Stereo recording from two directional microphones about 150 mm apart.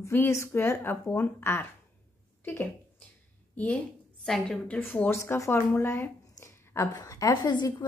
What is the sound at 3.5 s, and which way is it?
A woman's voice, 10° left (ahead or behind).